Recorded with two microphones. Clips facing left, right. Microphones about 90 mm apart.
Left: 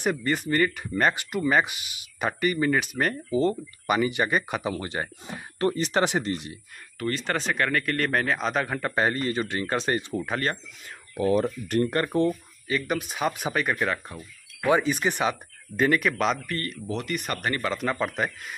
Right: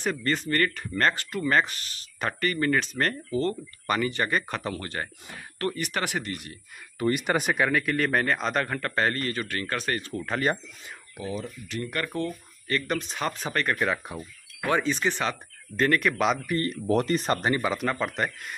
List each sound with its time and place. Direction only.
0.0 s speech: 15° left (ahead or behind)
7.0 s speech: 15° right (ahead or behind); by 10.2 s 20° left (ahead or behind)
11.2 s speech: 55° left (ahead or behind)
11.9 s speech: 30° left (ahead or behind)
12.3 s speech: 5° left (ahead or behind)
16.8 s speech: 40° right (ahead or behind); by 17.8 s 10° right (ahead or behind)
17.8 s speech: centre (ahead or behind)